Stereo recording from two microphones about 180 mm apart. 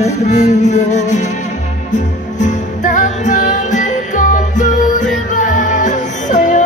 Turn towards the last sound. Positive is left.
turn(degrees=45)  # may be behind; listen again after turning